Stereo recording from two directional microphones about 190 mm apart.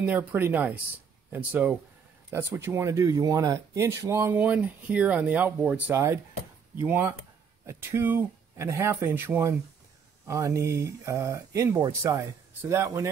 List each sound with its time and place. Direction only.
0.0 s speech: 10° right (ahead or behind)